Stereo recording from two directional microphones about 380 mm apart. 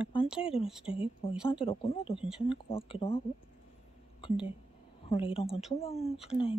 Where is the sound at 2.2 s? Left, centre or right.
Centre.